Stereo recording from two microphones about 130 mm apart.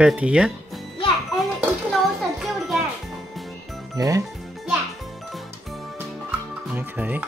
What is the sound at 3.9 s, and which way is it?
Speech, 25° right (ahead or behind).